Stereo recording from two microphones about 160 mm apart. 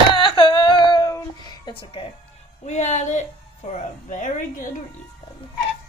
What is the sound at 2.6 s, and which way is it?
Speech, 45° left (ahead or behind).